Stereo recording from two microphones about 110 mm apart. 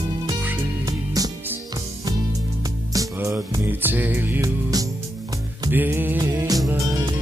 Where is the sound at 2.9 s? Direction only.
30° right (ahead or behind).